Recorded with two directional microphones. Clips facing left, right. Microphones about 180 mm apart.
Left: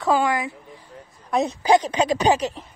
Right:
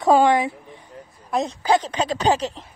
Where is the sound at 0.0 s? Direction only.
30° right (ahead or behind).